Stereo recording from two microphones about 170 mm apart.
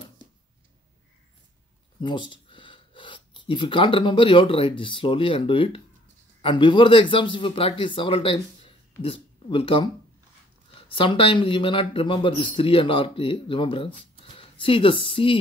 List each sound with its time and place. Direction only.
2.0 s speech: 30° left (ahead or behind)